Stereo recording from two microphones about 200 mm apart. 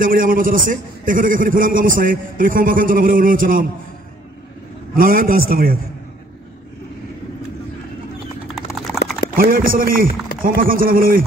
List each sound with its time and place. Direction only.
0.0 s a man's voice: 45° right (ahead or behind)
4.9 s a man's voice: 45° right (ahead or behind)
8.5 s clip-clop: centre (ahead or behind)
9.4 s a man's voice: 45° right (ahead or behind)